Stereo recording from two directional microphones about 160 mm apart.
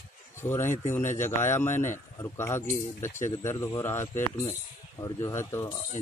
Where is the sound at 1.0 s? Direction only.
50° left (ahead or behind).